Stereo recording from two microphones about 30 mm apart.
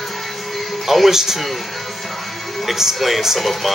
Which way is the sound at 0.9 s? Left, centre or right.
Centre.